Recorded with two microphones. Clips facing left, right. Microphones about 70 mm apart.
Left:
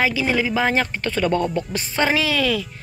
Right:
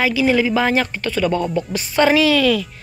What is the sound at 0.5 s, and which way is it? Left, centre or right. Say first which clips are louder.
Speech: right 2 dB; left.